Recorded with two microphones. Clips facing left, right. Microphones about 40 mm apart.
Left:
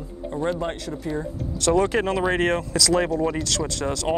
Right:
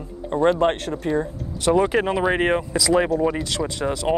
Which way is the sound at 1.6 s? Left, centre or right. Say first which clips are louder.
Right 2 dB; centre.